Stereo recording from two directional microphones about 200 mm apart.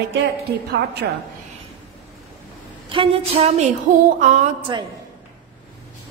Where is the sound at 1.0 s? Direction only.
50° right (ahead or behind).